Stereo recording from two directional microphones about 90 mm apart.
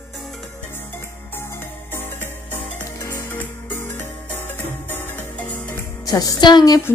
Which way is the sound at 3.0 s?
40° left (ahead or behind).